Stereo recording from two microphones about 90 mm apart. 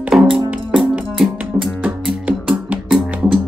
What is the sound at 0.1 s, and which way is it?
Music, 10° right (ahead or behind).